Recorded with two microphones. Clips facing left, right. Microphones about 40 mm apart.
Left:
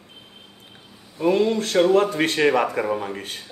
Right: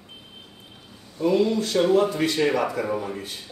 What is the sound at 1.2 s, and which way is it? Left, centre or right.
A man's voice, left.